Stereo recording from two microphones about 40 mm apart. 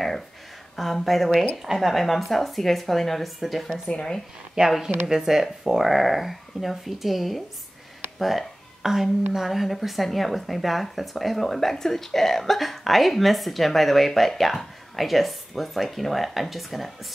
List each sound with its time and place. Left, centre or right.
0.7 s speech: centre
3.9 s a woman's voice: centre
4.6 s speech: centre
5.0 s speech: centre
8.2 s music: centre
9.3 s speech: centre